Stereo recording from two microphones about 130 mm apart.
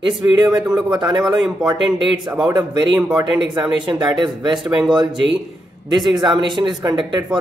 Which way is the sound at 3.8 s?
35° right (ahead or behind).